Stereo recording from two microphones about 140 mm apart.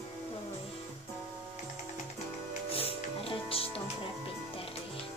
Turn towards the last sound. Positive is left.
turn(degrees=40)  # may be behind; listen again after turning